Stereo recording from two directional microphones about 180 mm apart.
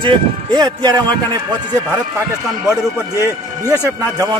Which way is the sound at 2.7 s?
15° right (ahead or behind).